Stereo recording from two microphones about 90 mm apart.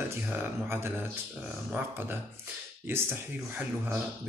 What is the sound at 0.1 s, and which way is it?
Speech, 30° right (ahead or behind).